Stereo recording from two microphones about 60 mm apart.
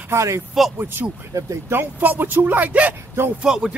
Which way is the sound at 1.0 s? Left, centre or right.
Right.